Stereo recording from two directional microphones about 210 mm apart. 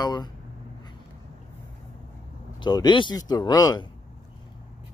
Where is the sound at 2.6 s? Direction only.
20° left (ahead or behind).